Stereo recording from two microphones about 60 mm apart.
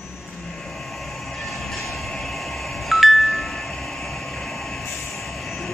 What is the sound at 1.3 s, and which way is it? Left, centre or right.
Chime, centre.